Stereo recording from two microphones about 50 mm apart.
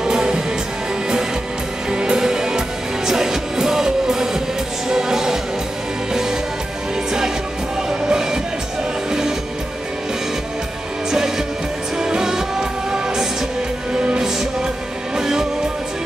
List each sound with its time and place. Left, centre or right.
0.0 s music: centre
1.9 s music: centre
8.1 s music: centre
11.1 s music: centre
13.9 s music: centre